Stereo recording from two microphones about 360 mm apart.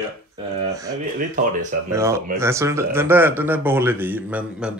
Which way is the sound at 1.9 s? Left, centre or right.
Centre.